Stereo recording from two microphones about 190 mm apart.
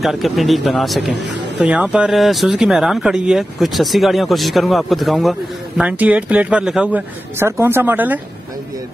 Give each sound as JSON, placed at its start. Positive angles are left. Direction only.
{"t": 0.0, "sound": "speech", "side_deg": 0}
{"t": 1.1, "sound": "speech", "side_deg": -70}
{"t": 1.6, "sound": "speech", "side_deg": -5}